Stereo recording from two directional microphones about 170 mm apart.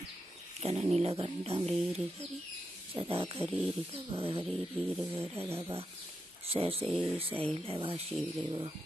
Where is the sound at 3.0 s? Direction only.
35° right (ahead or behind).